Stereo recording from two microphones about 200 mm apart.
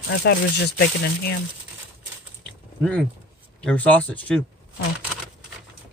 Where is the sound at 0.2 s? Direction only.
55° left (ahead or behind).